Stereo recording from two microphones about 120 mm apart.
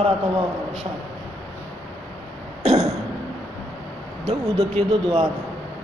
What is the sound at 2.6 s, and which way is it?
Throat clearing, 60° right (ahead or behind).